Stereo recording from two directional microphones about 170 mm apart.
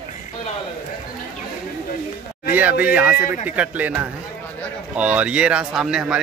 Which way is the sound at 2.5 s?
10° right (ahead or behind).